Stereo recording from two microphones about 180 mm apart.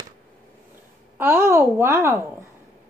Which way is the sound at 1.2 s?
10° right (ahead or behind).